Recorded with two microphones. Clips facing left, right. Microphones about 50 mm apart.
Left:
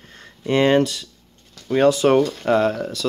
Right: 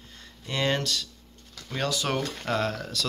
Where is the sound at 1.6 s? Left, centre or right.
Left.